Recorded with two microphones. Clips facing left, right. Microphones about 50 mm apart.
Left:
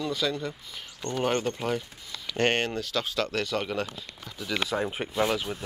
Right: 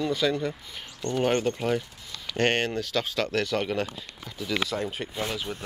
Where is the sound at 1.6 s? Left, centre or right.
Centre.